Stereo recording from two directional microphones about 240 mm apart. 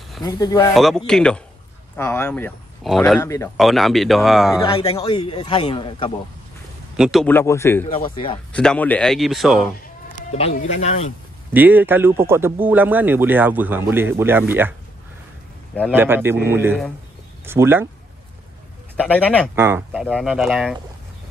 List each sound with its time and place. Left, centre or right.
0.2 s speech: centre
0.7 s speech: centre
3.5 s speech: centre
4.6 s a man's voice: left
7.0 s speech: centre
7.9 s a man's voice: left
8.5 s speech: centre
10.1 s a man's voice: left
11.5 s speech: centre
15.9 s speech: centre
18.9 s speech: centre
19.5 s speech: centre